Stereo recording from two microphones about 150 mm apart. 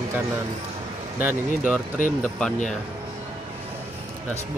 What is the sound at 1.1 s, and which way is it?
Speech, 10° right (ahead or behind).